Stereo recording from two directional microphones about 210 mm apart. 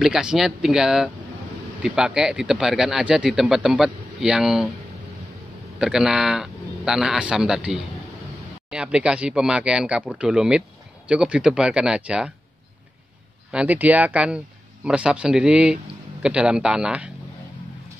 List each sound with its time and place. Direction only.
0.0 s speech: 5° right (ahead or behind)
5.8 s speech: 5° right (ahead or behind)
13.5 s speech: 5° right (ahead or behind)